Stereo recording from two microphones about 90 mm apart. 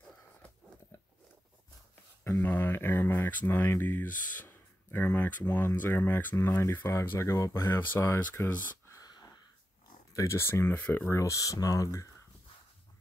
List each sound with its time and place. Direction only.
2.4 s speech: 20° left (ahead or behind)
8.9 s wheeze: 45° left (ahead or behind)
10.1 s speech: 30° left (ahead or behind)
11.1 s speech: 35° left (ahead or behind)